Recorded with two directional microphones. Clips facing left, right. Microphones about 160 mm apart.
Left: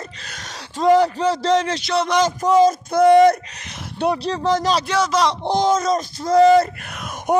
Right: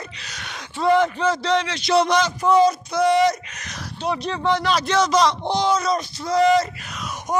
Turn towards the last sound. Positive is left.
turn(degrees=55)  # may be behind; listen again after turning